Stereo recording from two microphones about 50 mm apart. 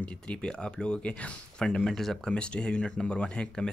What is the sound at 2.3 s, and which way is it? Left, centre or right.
Speech, left.